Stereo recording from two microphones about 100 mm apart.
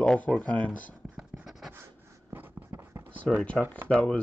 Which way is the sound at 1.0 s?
10° right (ahead or behind).